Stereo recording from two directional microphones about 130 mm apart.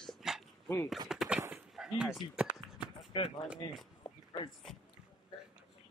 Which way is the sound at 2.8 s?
40° left (ahead or behind).